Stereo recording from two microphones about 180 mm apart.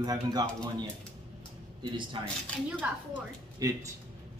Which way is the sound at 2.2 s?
25° right (ahead or behind).